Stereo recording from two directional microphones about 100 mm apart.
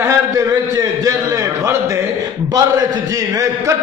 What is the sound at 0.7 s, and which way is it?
A man's voice, 35° right (ahead or behind).